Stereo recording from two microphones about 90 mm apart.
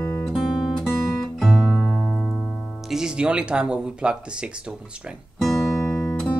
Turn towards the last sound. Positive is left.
turn(degrees=20)  # may be behind; listen again after turning